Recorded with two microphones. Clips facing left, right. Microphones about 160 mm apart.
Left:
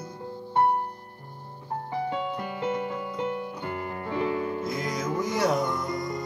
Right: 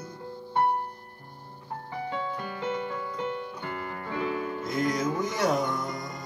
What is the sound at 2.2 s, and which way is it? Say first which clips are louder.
Music: left 3 dB; 15° left (ahead or behind).